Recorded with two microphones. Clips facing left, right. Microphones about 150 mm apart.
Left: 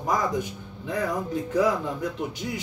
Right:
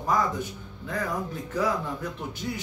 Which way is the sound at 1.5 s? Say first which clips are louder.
Left 4 dB; 15° left (ahead or behind).